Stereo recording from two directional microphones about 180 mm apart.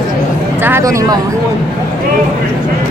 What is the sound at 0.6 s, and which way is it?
Speech, 15° right (ahead or behind).